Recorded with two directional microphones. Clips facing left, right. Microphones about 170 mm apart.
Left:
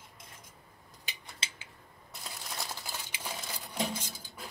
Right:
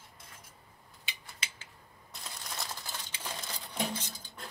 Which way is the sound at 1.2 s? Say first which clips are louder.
Left 1 dB; 20° left (ahead or behind).